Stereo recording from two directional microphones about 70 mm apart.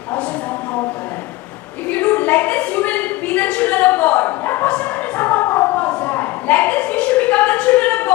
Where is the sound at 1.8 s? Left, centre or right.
Left.